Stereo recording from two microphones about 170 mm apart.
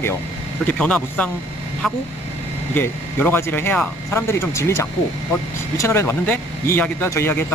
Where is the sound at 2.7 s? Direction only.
10° left (ahead or behind).